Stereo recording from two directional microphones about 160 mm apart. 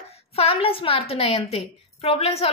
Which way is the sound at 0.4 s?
40° left (ahead or behind).